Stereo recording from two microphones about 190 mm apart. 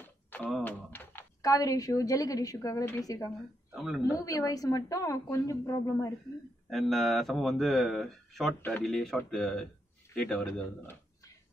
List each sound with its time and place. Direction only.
0.0 s typing: 10° left (ahead or behind)
3.3 s speech: centre (ahead or behind)
4.0 s a woman's voice: 20° left (ahead or behind)
6.7 s speech: centre (ahead or behind)